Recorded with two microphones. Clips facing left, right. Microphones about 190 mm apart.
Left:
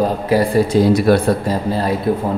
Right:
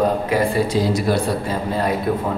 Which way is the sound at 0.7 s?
60° left (ahead or behind).